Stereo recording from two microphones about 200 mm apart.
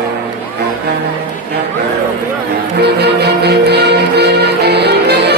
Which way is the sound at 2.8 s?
55° right (ahead or behind).